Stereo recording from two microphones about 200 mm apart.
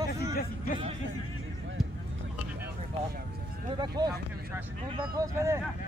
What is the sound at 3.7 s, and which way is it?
Speech, 20° right (ahead or behind).